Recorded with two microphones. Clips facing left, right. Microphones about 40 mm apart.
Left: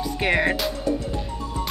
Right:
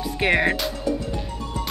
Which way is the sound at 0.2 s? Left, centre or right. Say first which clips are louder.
Right 2 dB; centre.